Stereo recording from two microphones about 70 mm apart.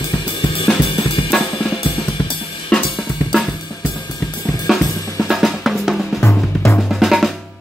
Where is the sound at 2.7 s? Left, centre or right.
Centre.